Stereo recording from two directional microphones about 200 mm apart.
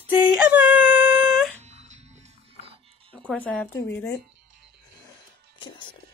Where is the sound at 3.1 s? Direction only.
5° left (ahead or behind).